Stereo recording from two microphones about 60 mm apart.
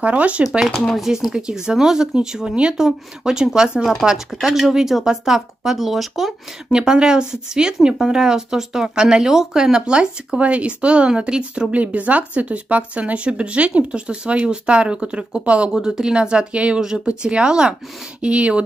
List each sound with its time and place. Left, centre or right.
0.0 s speech: right
0.7 s speech: centre
1.0 s speech: centre
11.7 s speech: right